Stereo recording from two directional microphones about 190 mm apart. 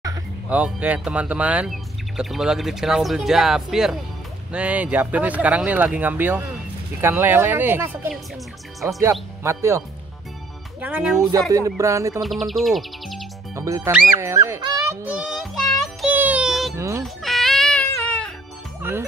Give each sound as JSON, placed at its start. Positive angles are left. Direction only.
{"t": 0.5, "sound": "speech", "side_deg": -5}
{"t": 9.4, "sound": "speech", "side_deg": -15}
{"t": 12.2, "sound": "speech", "side_deg": 0}
{"t": 13.6, "sound": "speech", "side_deg": -15}
{"t": 15.0, "sound": "child singing", "side_deg": -5}
{"t": 16.7, "sound": "music", "side_deg": -15}
{"t": 17.0, "sound": "baby cry", "side_deg": 0}
{"t": 18.8, "sound": "speech", "side_deg": -10}